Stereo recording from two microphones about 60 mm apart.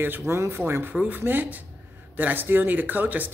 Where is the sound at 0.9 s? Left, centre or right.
Right.